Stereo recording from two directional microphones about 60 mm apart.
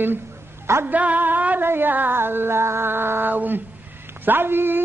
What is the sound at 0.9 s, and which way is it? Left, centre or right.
Music, right.